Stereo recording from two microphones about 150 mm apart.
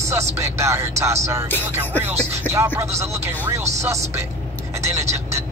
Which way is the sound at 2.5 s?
15° right (ahead or behind).